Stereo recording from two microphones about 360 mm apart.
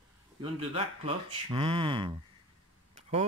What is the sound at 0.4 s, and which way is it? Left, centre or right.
Speech, centre.